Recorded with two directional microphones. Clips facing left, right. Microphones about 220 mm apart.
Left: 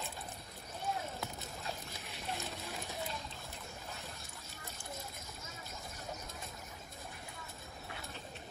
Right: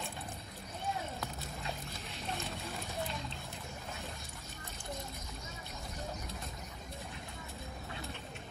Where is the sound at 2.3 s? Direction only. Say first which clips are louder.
Right 2 dB; centre (ahead or behind).